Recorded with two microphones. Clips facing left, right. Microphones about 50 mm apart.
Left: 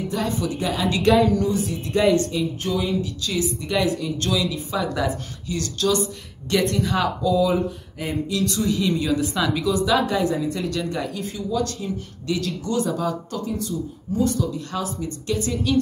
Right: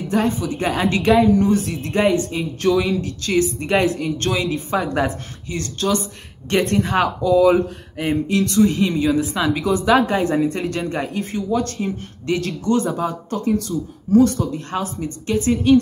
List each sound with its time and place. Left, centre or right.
0.1 s a woman's voice: right
0.6 s a woman's voice: right
1.2 s a woman's voice: right
1.5 s speech: right
1.9 s a woman's voice: right
2.6 s speech: right
3.2 s speech: right
5.5 s a woman's voice: right
7.4 s speech: right
8.1 s a woman's voice: right
13.4 s speech: right
14.3 s a woman's voice: right